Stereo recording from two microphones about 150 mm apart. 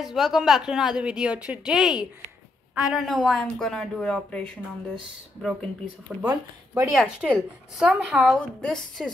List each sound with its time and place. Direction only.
0.0 s a woman's voice: centre (ahead or behind)
6.2 s speech: 15° right (ahead or behind)
6.9 s a woman's voice: centre (ahead or behind)